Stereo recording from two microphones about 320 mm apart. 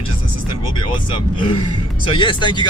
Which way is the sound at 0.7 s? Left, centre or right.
Centre.